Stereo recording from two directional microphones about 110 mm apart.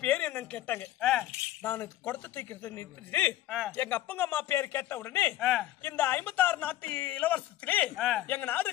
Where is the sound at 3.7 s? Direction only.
15° left (ahead or behind).